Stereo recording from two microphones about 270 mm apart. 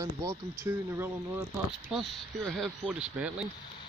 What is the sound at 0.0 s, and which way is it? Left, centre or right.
Speech, centre.